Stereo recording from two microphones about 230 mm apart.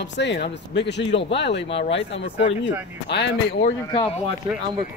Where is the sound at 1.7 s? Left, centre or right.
Left.